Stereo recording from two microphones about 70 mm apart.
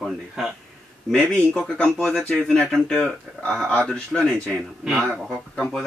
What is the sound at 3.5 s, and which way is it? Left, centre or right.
Speech, left.